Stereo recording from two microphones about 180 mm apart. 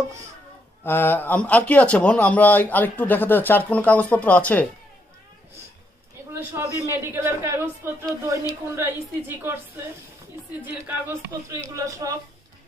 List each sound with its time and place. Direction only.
0.8 s speech: 10° left (ahead or behind)
6.9 s speech: 15° right (ahead or behind)